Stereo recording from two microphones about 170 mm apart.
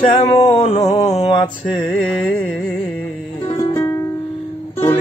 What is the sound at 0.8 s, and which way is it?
Music, 20° left (ahead or behind).